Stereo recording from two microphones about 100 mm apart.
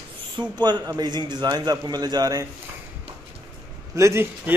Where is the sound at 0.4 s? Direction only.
45° right (ahead or behind).